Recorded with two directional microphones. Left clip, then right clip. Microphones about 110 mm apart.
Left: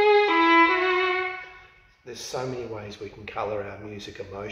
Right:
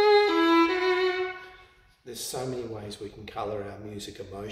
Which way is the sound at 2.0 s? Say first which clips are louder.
Left 2 dB; 20° right (ahead or behind).